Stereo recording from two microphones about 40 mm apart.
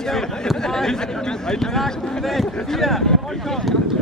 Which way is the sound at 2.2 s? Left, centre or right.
Centre.